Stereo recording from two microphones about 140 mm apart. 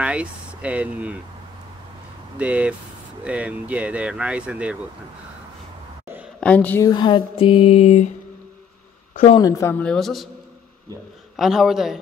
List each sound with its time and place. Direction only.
0.0 s speech: 10° right (ahead or behind)
2.3 s speech: 10° right (ahead or behind)
6.4 s a woman's voice: 10° left (ahead or behind)
6.8 s a sound: 30° left (ahead or behind); by 8.1 s 50° left (ahead or behind)
9.4 s speech: 20° left (ahead or behind)
9.8 s a man's voice: centre (ahead or behind)
11.3 s a man's voice: centre (ahead or behind)